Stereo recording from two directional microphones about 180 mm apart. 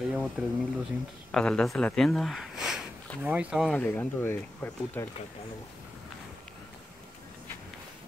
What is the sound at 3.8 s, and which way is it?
Speech, 10° left (ahead or behind).